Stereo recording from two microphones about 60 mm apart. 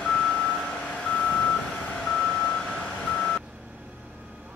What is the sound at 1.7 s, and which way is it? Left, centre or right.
Vehicle, centre.